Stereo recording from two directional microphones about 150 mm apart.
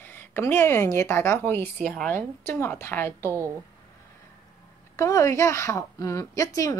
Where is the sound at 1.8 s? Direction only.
Centre (ahead or behind).